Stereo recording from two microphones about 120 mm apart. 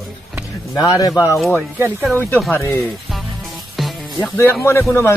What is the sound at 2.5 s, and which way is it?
Speech, 25° left (ahead or behind).